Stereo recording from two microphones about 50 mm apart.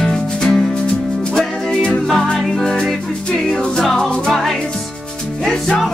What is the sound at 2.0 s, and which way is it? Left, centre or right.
Music, centre.